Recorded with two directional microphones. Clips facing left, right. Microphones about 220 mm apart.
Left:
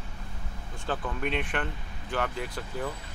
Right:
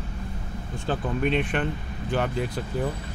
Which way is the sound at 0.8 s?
25° right (ahead or behind).